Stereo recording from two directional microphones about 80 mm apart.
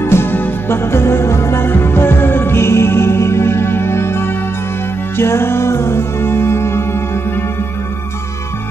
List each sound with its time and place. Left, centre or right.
0.0 s music: left